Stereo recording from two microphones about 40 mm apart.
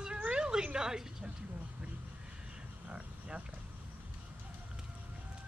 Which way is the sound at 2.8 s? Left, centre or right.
Right.